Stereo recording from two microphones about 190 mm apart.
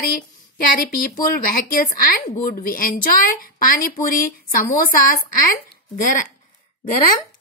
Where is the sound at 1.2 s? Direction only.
50° left (ahead or behind).